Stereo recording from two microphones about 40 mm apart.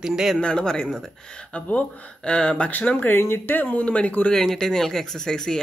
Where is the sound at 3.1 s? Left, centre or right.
Left.